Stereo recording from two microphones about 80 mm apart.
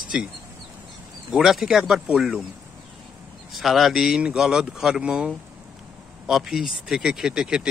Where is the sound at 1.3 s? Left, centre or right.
Centre.